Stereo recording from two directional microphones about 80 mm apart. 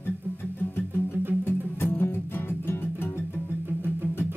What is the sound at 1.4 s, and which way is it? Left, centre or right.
Music, left.